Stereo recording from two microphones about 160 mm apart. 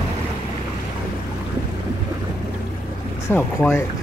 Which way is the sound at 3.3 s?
15° left (ahead or behind).